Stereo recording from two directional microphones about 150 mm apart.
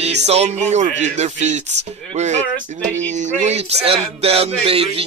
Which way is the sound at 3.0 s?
50° right (ahead or behind).